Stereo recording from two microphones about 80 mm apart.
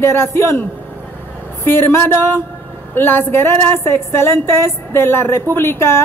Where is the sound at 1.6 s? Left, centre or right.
Left.